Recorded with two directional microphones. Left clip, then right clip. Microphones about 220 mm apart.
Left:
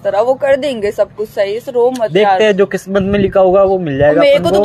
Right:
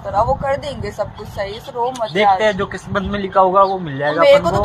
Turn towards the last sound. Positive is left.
turn(degrees=55)  # may be behind; listen again after turning